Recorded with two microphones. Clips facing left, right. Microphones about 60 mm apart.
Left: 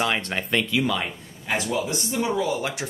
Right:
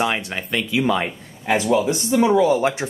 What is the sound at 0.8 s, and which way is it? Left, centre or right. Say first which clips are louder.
Speech: right 5 dB; right.